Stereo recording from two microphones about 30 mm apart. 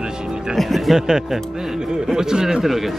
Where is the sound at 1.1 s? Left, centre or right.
Centre.